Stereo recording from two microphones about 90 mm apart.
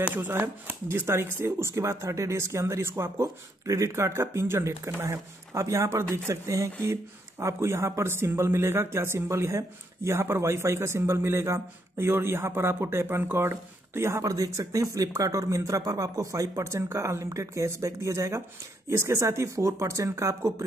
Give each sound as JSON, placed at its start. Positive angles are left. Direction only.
{"t": 0.0, "sound": "speech", "side_deg": -20}